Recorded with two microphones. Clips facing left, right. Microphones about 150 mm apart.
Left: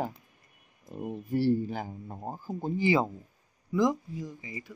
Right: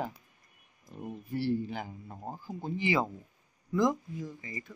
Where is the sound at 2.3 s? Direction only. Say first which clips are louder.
Left 4 dB; 45° left (ahead or behind).